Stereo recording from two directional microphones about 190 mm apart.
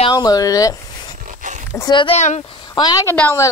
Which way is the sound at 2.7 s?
20° left (ahead or behind).